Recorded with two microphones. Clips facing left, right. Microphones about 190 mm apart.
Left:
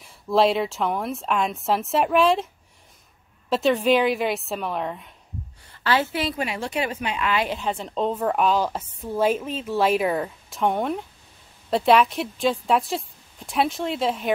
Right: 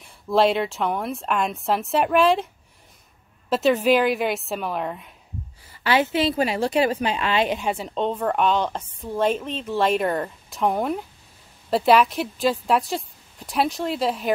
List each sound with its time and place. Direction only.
0.0 s a woman's voice: centre (ahead or behind)
3.4 s a woman's voice: centre (ahead or behind)
5.9 s a woman's voice: 15° right (ahead or behind)
6.2 s a woman's voice: 35° right (ahead or behind)
7.4 s a woman's voice: 15° right (ahead or behind)